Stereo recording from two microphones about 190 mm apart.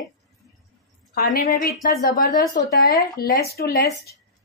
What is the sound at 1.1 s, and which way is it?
Speech, 50° left (ahead or behind).